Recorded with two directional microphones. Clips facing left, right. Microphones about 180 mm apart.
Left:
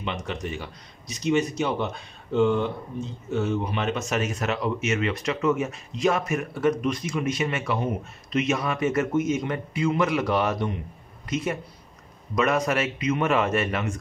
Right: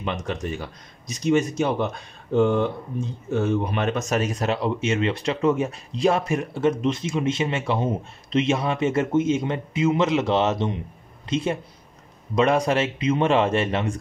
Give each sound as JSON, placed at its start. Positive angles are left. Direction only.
{"t": 0.0, "sound": "speech", "side_deg": -45}
{"t": 3.3, "sound": "speech", "side_deg": -55}
{"t": 4.2, "sound": "speech", "side_deg": -35}